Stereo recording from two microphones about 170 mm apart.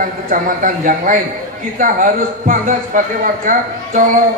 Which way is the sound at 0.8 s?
50° right (ahead or behind).